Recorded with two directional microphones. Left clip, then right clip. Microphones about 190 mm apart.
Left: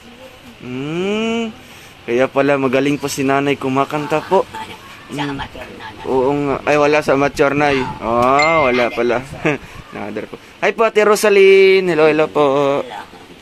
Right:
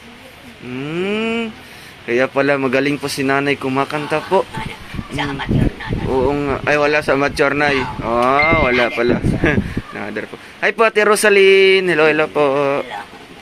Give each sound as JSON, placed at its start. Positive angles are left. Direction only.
{"t": 0.7, "sound": "vehicle", "side_deg": 15}
{"t": 2.0, "sound": "speech", "side_deg": 15}
{"t": 6.0, "sound": "speech", "side_deg": 10}